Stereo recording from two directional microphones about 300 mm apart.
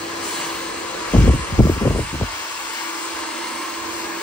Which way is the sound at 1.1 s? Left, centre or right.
Centre.